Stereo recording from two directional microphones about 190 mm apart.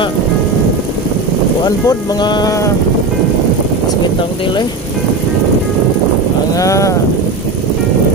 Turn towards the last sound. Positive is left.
turn(degrees=15)  # may be behind; listen again after turning